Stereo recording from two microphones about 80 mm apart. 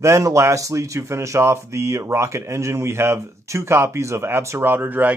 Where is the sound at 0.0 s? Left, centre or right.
Right.